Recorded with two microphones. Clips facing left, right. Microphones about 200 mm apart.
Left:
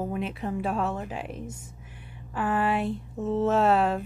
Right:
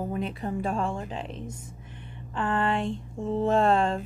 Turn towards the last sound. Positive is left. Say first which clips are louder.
# even
turn(degrees=5)  # may be behind; listen again after turning